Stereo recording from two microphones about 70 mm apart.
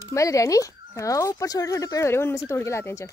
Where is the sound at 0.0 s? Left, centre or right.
Left.